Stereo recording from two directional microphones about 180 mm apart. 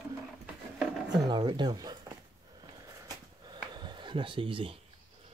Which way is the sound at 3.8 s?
25° right (ahead or behind).